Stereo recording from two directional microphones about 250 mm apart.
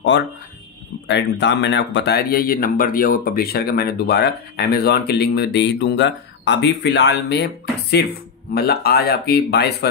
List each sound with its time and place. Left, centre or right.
1.0 s speech: left